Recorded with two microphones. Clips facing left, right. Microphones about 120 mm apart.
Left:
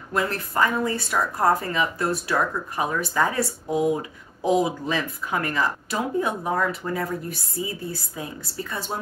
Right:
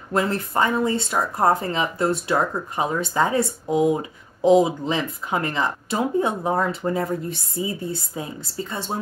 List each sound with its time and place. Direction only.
0.1 s speech: 25° right (ahead or behind)